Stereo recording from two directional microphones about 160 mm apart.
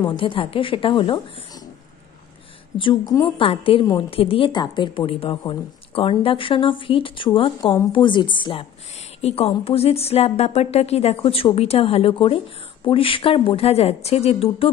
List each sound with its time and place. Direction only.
0.0 s a woman's voice: 30° left (ahead or behind)
2.8 s a woman's voice: 30° left (ahead or behind)